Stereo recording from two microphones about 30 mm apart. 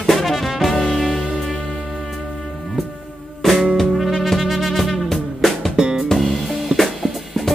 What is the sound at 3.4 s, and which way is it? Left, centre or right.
Music, centre.